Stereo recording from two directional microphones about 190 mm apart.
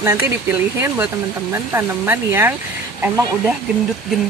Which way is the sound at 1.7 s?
10° right (ahead or behind).